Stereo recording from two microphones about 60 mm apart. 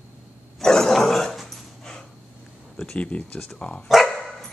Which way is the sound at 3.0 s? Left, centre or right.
Centre.